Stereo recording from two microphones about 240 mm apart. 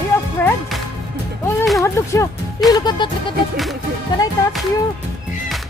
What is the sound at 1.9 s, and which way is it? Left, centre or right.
Music, centre.